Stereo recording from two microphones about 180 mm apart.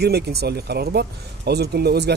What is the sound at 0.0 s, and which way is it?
A man's voice, 65° right (ahead or behind).